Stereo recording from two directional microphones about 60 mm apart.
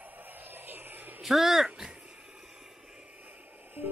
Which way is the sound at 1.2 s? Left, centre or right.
Centre.